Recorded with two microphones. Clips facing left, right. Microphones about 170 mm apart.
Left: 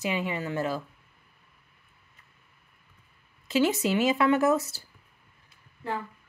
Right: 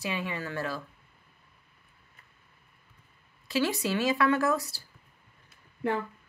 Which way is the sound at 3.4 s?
20° left (ahead or behind).